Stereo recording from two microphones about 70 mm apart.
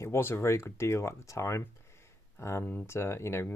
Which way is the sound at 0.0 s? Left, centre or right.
Left.